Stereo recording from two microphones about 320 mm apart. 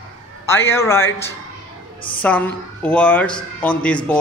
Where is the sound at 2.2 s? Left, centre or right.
Centre.